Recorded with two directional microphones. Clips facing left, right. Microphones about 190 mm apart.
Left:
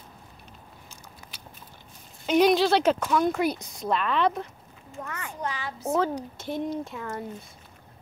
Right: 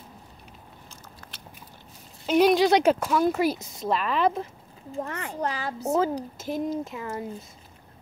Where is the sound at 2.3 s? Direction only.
5° right (ahead or behind).